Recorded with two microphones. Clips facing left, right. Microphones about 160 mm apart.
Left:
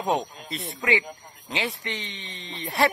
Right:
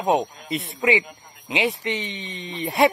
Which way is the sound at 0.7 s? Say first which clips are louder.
Right 4 dB; 20° right (ahead or behind).